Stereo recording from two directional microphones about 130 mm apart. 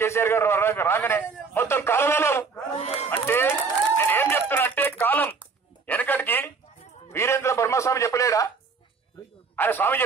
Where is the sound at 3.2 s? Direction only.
15° left (ahead or behind).